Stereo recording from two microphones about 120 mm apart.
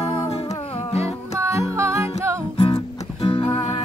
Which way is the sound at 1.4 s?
25° right (ahead or behind).